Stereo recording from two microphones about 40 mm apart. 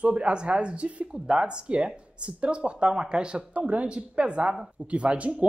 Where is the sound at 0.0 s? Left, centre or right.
Right.